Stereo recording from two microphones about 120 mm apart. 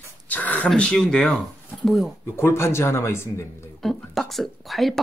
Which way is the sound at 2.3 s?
20° left (ahead or behind).